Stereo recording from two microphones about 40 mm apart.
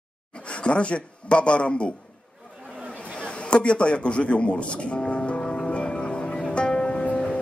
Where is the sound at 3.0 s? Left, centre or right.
Left.